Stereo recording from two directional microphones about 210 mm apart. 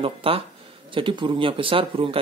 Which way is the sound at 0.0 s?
25° right (ahead or behind).